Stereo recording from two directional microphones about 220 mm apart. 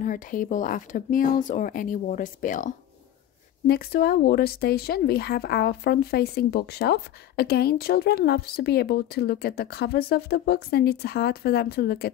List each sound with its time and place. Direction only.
0.0 s speech: 40° left (ahead or behind)